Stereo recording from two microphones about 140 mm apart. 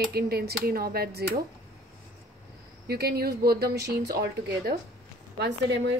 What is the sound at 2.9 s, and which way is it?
Speech, 90° right.